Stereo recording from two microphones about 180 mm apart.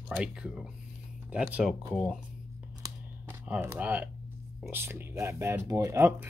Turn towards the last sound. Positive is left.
turn(degrees=-15)  # may be behind; listen again after turning